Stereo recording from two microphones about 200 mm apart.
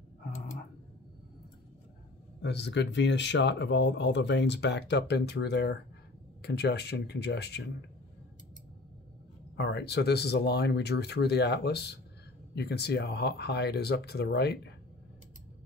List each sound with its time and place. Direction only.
2.4 s speech: 60° left (ahead or behind)
9.6 s speech: 60° left (ahead or behind)